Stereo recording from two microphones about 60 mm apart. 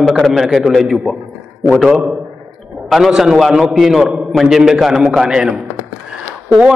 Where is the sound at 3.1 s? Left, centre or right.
Centre.